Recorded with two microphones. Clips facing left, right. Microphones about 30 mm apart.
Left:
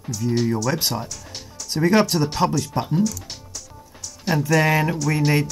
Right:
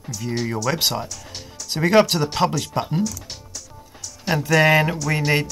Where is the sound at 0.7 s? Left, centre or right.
Right.